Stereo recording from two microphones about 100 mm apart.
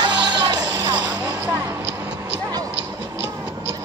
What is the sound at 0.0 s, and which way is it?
Music, 45° right (ahead or behind).